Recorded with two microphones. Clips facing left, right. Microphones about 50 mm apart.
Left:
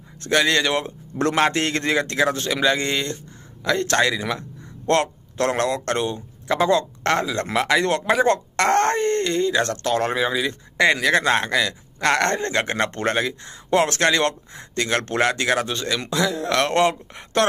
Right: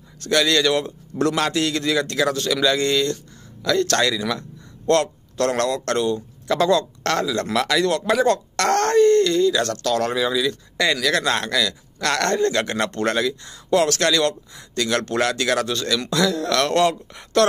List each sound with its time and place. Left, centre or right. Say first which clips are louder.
0.2 s a man's voice: right 1 dB; left